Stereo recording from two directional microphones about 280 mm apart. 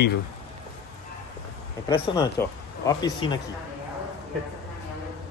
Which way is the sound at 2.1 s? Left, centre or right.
Centre.